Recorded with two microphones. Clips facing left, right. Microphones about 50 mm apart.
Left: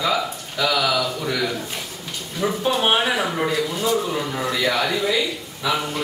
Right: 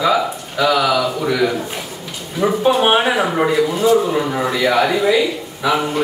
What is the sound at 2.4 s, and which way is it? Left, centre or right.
Speech, centre.